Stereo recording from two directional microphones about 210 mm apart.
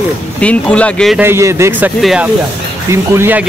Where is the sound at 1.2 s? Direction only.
10° right (ahead or behind).